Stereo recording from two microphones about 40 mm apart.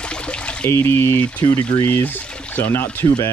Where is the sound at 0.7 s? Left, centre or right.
Left.